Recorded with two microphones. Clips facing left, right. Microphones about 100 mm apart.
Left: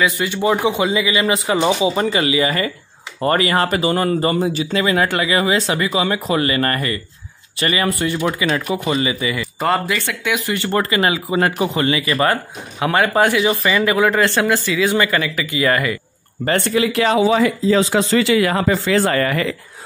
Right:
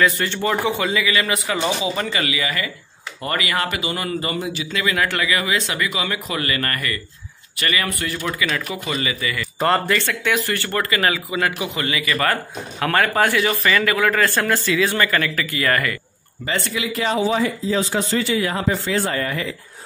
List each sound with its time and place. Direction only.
0.0 s a man's voice: 10° left (ahead or behind)
9.6 s a man's voice: 5° left (ahead or behind)
16.4 s speech: 55° left (ahead or behind)
16.9 s speech: 85° left